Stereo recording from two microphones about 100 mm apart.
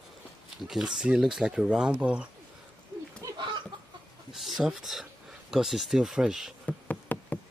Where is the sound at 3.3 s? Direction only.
50° right (ahead or behind).